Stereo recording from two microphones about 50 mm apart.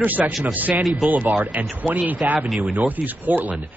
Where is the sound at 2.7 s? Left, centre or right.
Right.